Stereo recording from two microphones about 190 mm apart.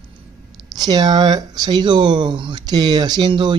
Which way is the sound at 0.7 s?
20° right (ahead or behind).